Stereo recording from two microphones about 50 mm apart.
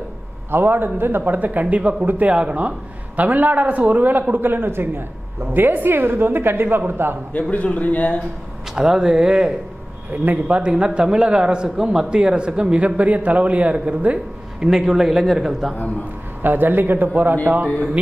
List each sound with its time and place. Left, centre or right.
0.5 s a man's voice: right
7.5 s speech: left
8.7 s a man's voice: centre
10.1 s a man's voice: right
10.6 s a man's voice: right
14.6 s a man's voice: centre
16.4 s a man's voice: right